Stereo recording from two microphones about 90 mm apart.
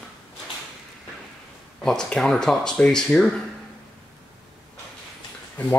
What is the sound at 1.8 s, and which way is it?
Speech, 5° left (ahead or behind).